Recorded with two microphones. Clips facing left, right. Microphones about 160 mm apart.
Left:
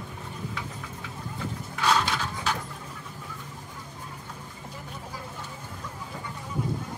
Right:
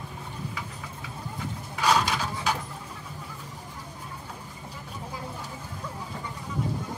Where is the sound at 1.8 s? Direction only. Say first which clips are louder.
Right 1 dB; 10° right (ahead or behind).